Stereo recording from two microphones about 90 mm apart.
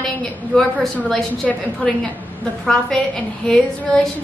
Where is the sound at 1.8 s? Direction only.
15° left (ahead or behind).